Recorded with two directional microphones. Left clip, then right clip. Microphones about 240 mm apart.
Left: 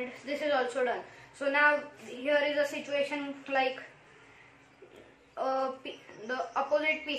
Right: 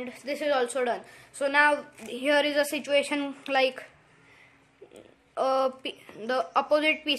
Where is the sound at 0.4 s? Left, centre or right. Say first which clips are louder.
Right 3 dB; right.